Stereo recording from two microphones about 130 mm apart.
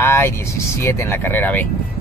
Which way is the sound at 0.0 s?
20° left (ahead or behind).